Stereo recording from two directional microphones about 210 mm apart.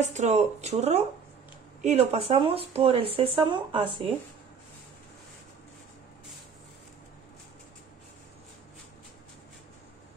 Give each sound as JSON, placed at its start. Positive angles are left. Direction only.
{"t": 0.0, "sound": "speech", "side_deg": -30}